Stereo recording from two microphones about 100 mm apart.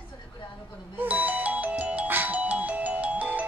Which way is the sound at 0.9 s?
15° right (ahead or behind).